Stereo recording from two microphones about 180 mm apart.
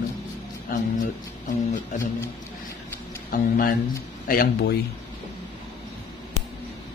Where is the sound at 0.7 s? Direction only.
55° left (ahead or behind).